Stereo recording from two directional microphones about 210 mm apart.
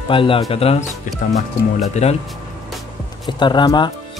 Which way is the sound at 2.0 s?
35° left (ahead or behind).